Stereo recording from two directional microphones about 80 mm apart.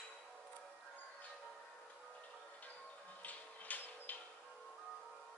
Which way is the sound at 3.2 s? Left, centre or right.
Centre.